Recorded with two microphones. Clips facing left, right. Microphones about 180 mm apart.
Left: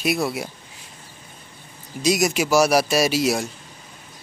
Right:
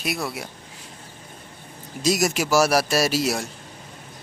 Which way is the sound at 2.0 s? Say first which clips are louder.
Left 2 dB; centre (ahead or behind).